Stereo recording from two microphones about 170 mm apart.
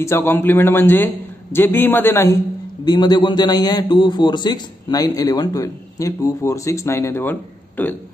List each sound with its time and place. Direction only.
0.0 s a man's voice: 15° left (ahead or behind)
2.8 s a man's voice: 25° left (ahead or behind)